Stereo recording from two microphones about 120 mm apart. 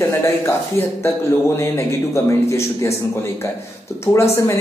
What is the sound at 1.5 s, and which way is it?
A man's voice, 25° left (ahead or behind).